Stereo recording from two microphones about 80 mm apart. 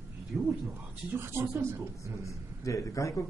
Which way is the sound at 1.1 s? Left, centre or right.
Right.